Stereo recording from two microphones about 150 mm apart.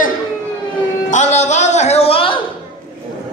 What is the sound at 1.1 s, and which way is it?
Speech, 50° left (ahead or behind).